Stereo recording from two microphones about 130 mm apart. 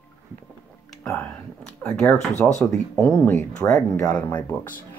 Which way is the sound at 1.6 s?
10° left (ahead or behind).